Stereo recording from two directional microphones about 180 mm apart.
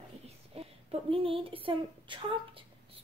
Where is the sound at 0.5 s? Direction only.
35° right (ahead or behind).